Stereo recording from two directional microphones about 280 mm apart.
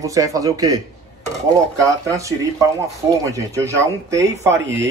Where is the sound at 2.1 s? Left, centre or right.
Centre.